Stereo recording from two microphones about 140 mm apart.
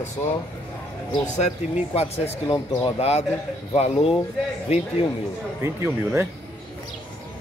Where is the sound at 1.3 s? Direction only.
50° left (ahead or behind).